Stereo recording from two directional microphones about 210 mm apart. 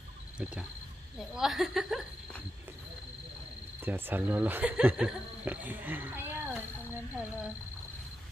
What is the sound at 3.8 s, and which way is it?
Speech, 10° right (ahead or behind).